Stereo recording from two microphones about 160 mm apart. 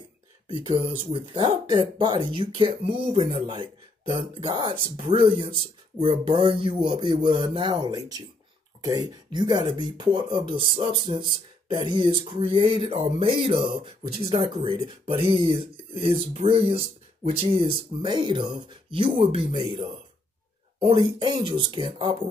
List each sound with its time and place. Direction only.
0.5 s speech: 35° right (ahead or behind)